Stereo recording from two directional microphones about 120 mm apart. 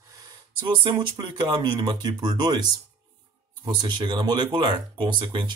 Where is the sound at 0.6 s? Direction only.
40° right (ahead or behind).